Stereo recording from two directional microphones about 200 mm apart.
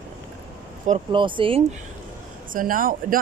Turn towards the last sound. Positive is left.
turn(degrees=-45)  # may be behind; listen again after turning